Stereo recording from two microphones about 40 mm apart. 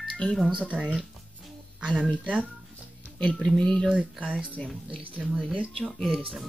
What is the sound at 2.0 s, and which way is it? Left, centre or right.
Speech, right.